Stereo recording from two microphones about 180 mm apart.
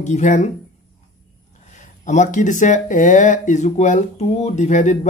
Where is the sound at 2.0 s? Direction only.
45° left (ahead or behind).